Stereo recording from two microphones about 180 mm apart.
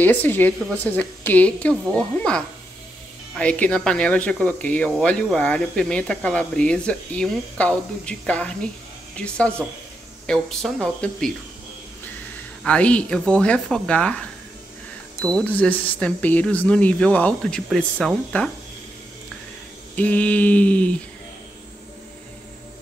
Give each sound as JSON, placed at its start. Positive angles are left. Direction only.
{"t": 0.0, "sound": "speech", "side_deg": 10}
{"t": 10.2, "sound": "speech", "side_deg": 0}
{"t": 12.6, "sound": "speech", "side_deg": 5}
{"t": 15.2, "sound": "speech", "side_deg": 5}
{"t": 20.0, "sound": "speech", "side_deg": 10}